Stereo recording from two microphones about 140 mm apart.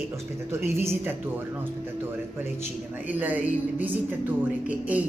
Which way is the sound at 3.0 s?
10° right (ahead or behind).